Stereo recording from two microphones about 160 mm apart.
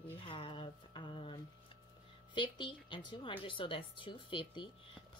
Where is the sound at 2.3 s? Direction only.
30° left (ahead or behind).